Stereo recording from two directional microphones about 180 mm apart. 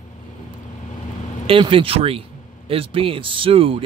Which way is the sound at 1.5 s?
30° right (ahead or behind).